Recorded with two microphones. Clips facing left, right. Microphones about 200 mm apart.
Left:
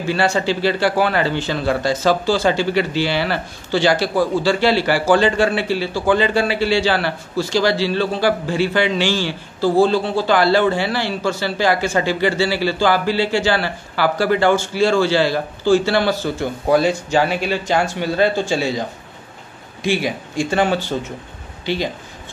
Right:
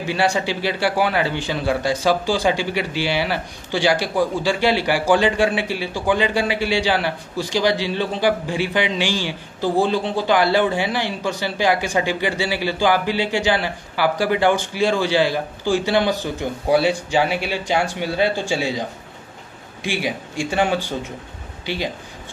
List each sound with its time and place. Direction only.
0.0 s speech: 15° right (ahead or behind)